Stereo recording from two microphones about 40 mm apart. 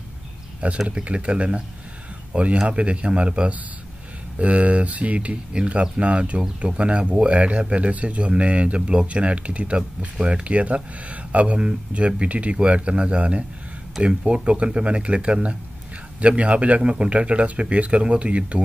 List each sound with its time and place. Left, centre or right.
0.6 s speech: right
16.2 s speech: right